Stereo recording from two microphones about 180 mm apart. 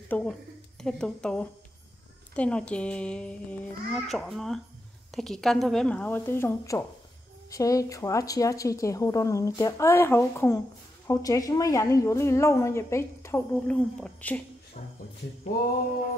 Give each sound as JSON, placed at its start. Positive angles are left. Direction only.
{"t": 0.1, "sound": "speech", "side_deg": 5}
{"t": 14.8, "sound": "speech", "side_deg": 45}